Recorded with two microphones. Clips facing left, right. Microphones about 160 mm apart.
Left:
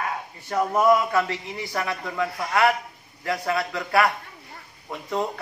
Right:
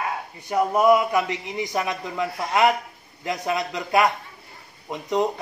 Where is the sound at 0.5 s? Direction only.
15° right (ahead or behind).